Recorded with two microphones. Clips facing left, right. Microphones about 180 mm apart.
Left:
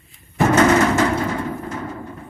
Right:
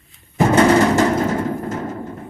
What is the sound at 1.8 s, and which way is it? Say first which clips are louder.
Music: right 3 dB; 25° right (ahead or behind).